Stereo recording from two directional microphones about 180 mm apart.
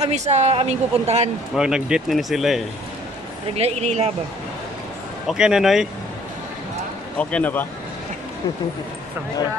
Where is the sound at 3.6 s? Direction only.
35° right (ahead or behind).